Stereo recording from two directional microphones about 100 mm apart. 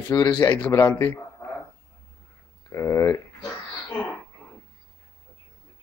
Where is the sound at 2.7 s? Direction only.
30° left (ahead or behind).